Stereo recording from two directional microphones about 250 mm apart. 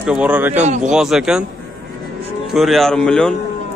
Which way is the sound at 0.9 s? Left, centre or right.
Centre.